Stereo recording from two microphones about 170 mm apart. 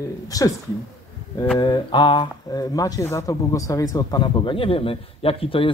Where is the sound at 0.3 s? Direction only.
20° left (ahead or behind).